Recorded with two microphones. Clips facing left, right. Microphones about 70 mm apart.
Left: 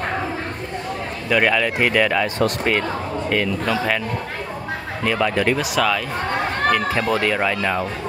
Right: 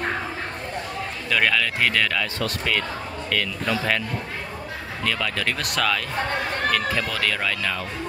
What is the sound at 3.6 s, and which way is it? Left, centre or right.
Speech, centre.